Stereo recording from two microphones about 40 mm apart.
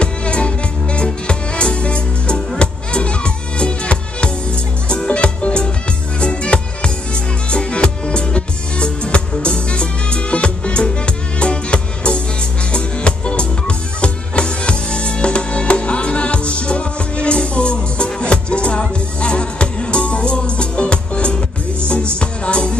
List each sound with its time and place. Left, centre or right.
0.0 s music: left